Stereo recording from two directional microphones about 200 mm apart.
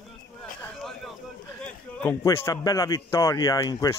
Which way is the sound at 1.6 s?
10° left (ahead or behind).